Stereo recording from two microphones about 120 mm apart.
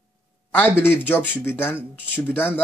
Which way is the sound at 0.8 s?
15° left (ahead or behind).